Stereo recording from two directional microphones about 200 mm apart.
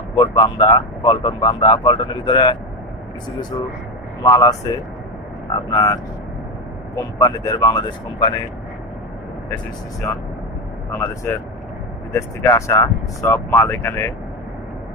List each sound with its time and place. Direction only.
0.1 s speech: 20° left (ahead or behind)
4.2 s speech: 20° left (ahead or behind)
7.0 s speech: 20° left (ahead or behind)
11.3 s speech: 10° left (ahead or behind)